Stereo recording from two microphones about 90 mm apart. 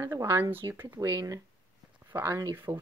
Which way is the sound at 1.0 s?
40° right (ahead or behind).